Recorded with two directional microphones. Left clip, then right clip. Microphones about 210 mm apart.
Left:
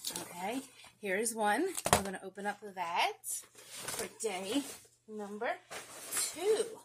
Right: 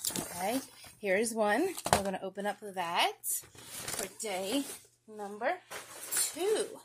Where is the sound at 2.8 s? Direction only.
60° right (ahead or behind).